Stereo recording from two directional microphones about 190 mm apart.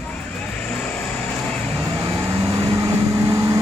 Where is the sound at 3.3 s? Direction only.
15° right (ahead or behind).